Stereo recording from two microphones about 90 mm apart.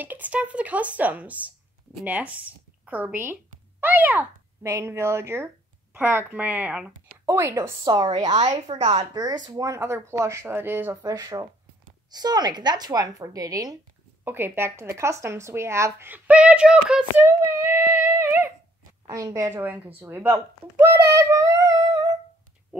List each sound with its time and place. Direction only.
0.0 s speech: 20° right (ahead or behind)
4.6 s speech: 30° right (ahead or behind); by 7.2 s 15° right (ahead or behind)
7.2 s speech: 35° right (ahead or behind)
7.8 s a woman's voice: 50° right (ahead or behind)
8.7 s speech: 90° right
9.1 s speech: 45° right (ahead or behind); by 11.0 s 25° right (ahead or behind)
11.1 s a woman's voice: 40° right (ahead or behind)
14.2 s speech: 25° right (ahead or behind)
16.3 s speech: 15° right (ahead or behind)
17.4 s a sound: 30° right (ahead or behind)
19.0 s speech: 40° right (ahead or behind)
19.6 s speech: 20° right (ahead or behind)
21.1 s humming: 35° right (ahead or behind)